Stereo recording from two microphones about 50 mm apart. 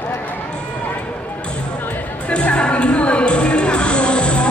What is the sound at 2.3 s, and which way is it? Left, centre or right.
Music, left.